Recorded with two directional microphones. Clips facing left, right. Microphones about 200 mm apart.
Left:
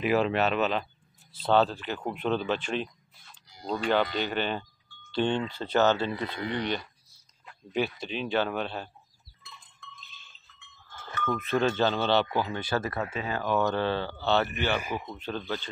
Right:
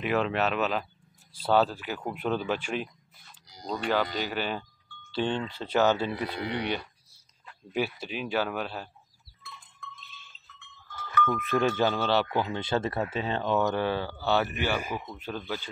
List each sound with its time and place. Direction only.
0.0 s speech: 5° left (ahead or behind)
3.6 s speech: centre (ahead or behind)
7.7 s speech: 10° right (ahead or behind)
11.2 s speech: 10° right (ahead or behind)
12.4 s speech: 20° right (ahead or behind)
12.9 s speech: 5° right (ahead or behind)
13.2 s speech: 25° right (ahead or behind)
14.9 s speech: 10° left (ahead or behind)
15.1 s speech: 10° right (ahead or behind)